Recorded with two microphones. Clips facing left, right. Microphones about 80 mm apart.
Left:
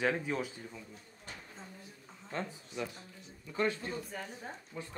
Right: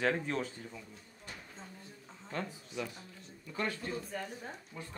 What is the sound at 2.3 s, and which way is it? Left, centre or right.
Speech, left.